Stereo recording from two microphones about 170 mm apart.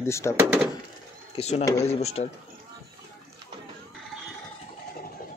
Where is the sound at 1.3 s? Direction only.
35° left (ahead or behind).